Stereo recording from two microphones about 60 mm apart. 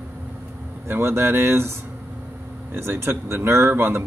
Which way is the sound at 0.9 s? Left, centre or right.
Right.